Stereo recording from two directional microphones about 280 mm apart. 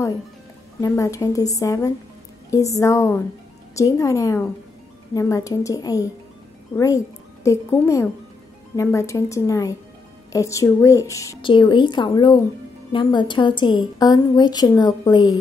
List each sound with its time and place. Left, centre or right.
0.7 s a woman's voice: centre